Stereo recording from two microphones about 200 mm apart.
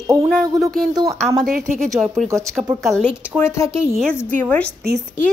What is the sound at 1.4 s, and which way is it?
Speech, 45° right (ahead or behind).